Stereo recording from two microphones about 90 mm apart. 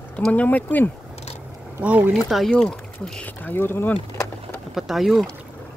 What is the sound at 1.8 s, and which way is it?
Speech, 15° right (ahead or behind).